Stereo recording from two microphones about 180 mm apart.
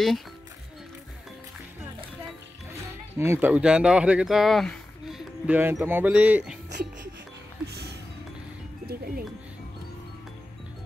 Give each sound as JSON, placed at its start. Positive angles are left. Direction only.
{"t": 3.2, "sound": "speech", "side_deg": -10}
{"t": 7.6, "sound": "music", "side_deg": -65}